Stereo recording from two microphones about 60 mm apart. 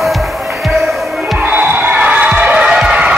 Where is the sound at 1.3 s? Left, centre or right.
Right.